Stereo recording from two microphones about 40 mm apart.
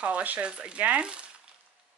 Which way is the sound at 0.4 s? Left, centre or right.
Right.